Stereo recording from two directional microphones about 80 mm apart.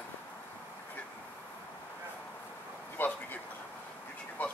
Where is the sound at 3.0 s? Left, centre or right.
Left.